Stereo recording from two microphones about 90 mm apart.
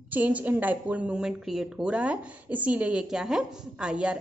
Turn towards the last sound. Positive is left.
turn(degrees=-10)  # may be behind; listen again after turning